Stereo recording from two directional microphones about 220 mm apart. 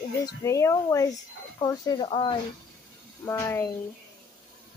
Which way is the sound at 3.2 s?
10° left (ahead or behind).